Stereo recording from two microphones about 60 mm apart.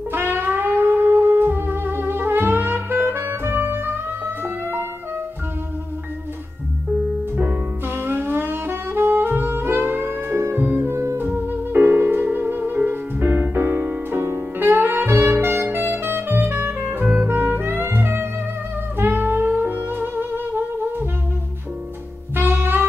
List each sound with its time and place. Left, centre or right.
0.1 s music: right
7.3 s saxophone: right
10.9 s music: right
11.1 s music: right
14.6 s saxophone: right
18.9 s music: right
22.3 s saxophone: right